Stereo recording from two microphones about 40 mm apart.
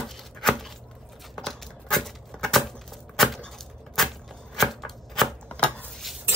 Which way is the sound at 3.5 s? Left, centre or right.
Centre.